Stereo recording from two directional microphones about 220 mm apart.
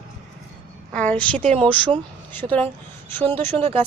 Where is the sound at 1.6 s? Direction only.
20° right (ahead or behind).